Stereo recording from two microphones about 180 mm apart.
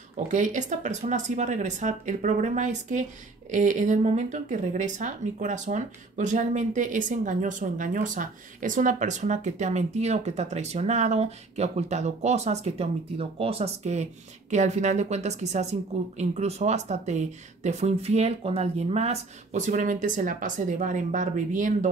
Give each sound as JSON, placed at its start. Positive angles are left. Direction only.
{"t": 0.3, "sound": "speech", "side_deg": -45}